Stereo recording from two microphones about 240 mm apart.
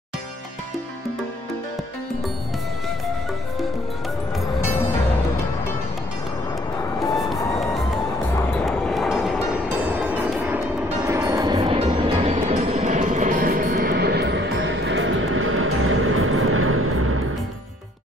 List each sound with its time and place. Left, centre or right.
8.3 s music: centre
8.6 s vehicle: centre
11.6 s music: right